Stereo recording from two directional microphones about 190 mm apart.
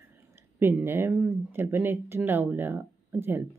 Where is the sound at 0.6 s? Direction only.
10° right (ahead or behind).